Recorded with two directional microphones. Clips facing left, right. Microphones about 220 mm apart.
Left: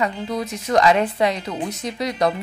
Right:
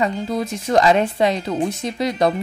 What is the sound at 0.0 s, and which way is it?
Speech, 25° right (ahead or behind).